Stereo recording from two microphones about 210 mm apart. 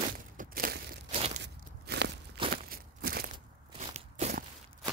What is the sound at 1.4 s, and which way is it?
Walk, 55° right (ahead or behind).